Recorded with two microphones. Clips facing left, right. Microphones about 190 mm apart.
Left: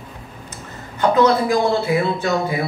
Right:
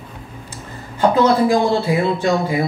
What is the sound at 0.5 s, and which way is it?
Speech, 30° right (ahead or behind).